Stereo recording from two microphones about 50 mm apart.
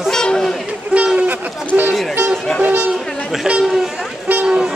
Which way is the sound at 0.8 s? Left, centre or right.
Right.